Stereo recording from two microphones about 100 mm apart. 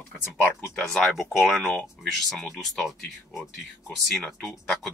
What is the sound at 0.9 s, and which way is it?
Speech, 5° left (ahead or behind).